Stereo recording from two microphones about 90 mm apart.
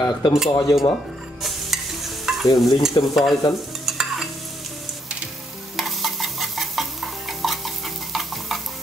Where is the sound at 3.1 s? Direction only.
Centre (ahead or behind).